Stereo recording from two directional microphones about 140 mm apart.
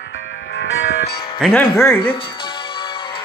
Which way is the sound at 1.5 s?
15° left (ahead or behind).